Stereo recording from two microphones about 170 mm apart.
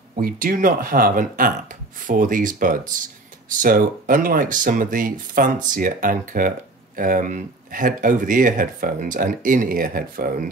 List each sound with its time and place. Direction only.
0.1 s speech: 55° right (ahead or behind)